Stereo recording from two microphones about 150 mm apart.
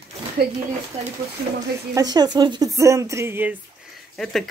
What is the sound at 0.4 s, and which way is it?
Speech, 90° right.